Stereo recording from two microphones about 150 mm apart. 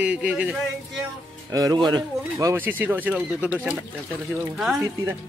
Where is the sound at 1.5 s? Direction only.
25° right (ahead or behind); by 4.8 s centre (ahead or behind).